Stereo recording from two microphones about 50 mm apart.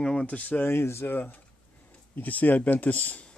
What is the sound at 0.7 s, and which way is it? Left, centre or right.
Speech, left.